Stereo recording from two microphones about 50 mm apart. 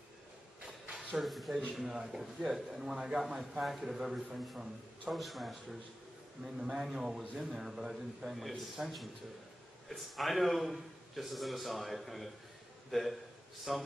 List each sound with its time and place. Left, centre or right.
0.8 s a sound: centre
1.2 s a man's voice: centre
6.4 s a man's voice: centre
9.8 s a man's voice: centre